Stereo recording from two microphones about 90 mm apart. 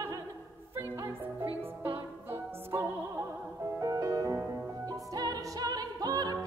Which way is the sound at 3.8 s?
40° right (ahead or behind).